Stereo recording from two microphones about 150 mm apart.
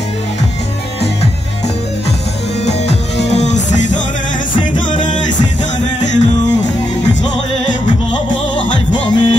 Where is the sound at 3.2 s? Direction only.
50° left (ahead or behind).